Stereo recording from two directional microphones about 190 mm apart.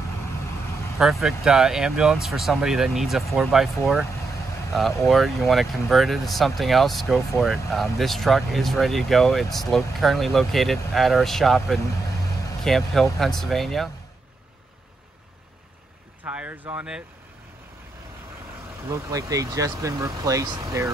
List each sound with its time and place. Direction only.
0.9 s speech: centre (ahead or behind)
16.3 s speech: 5° right (ahead or behind)
18.9 s speech: 15° right (ahead or behind)